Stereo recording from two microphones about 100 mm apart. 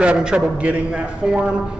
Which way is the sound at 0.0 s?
10° right (ahead or behind).